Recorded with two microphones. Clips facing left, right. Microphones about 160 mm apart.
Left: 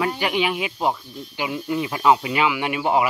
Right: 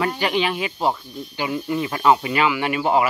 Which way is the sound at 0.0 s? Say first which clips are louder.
Right 1 dB; 10° left (ahead or behind).